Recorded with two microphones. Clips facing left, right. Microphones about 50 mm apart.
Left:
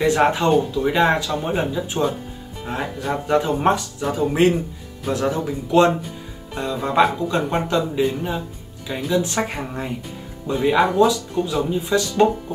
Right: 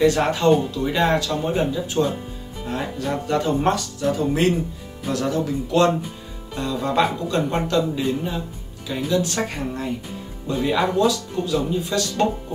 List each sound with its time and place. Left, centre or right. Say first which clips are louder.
0.0 s speech: left 1 dB; centre
0.5 s speech: even; centre
0.8 s speech: left 2 dB; centre